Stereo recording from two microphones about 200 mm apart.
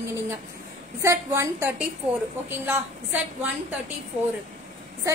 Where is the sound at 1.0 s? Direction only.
15° right (ahead or behind).